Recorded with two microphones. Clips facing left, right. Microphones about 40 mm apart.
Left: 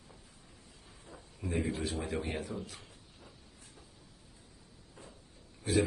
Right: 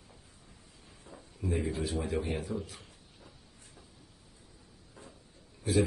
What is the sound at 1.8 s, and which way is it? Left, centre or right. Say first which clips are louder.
A man's voice: right 3 dB; centre.